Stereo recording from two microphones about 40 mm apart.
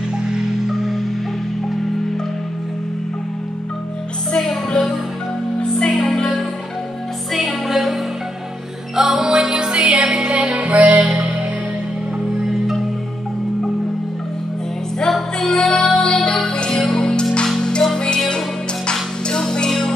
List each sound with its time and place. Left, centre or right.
0.7 s music: centre
4.4 s music: centre
5.6 s music: left
7.3 s music: centre
8.9 s music: centre; by 11.1 s right
12.4 s music: centre
15.0 s music: centre